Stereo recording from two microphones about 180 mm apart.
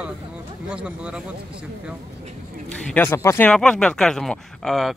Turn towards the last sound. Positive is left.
turn(degrees=0)  # may be behind; listen again after turning